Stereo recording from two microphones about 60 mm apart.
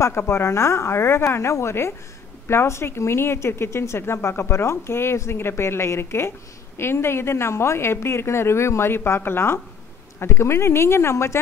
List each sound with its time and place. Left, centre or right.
0.0 s speech: left